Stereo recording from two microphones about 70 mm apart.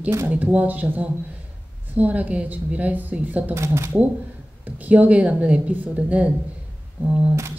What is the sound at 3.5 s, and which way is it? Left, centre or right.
Speech, right.